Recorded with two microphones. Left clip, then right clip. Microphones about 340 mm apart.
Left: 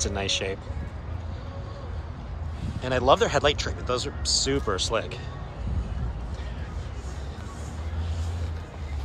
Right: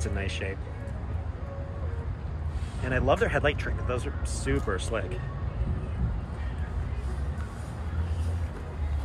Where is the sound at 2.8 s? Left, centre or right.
Centre.